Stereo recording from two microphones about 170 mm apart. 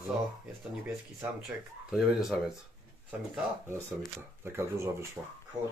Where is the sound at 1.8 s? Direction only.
Centre (ahead or behind).